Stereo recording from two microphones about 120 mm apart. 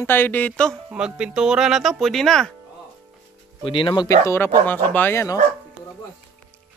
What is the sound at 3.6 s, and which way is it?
Speech, 40° left (ahead or behind).